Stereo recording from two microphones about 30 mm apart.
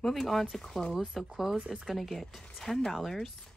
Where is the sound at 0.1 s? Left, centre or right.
Centre.